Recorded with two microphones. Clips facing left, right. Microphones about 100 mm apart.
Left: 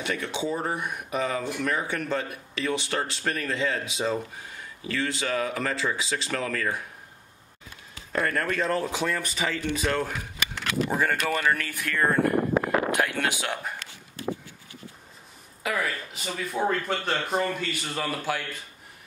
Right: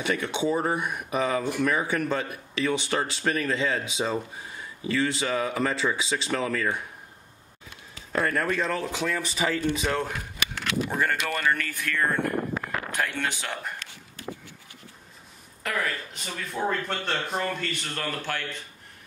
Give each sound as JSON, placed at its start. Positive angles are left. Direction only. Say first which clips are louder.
{"t": 0.0, "sound": "speech", "louder": "right 3 dB", "side_deg": 0}
{"t": 8.1, "sound": "speech", "louder": "right 1 dB", "side_deg": -5}
{"t": 8.7, "sound": "speech", "louder": "left 2 dB", "side_deg": 15}
{"t": 9.1, "sound": "speech", "louder": "right 2 dB", "side_deg": 0}
{"t": 12.5, "sound": "a sound", "louder": "left 8 dB", "side_deg": 30}
{"t": 12.9, "sound": "speech", "louder": "left 3 dB", "side_deg": 10}
{"t": 15.6, "sound": "speech", "louder": "left 1 dB", "side_deg": 5}